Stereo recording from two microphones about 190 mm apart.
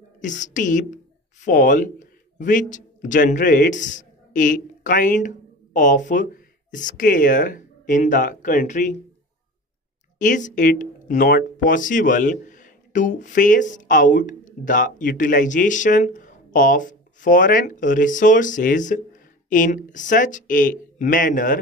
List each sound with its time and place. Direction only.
0.2 s speech: 40° left (ahead or behind)
10.1 s speech: 40° left (ahead or behind)